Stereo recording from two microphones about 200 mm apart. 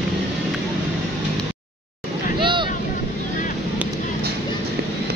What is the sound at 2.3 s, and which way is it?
Boat, 25° right (ahead or behind).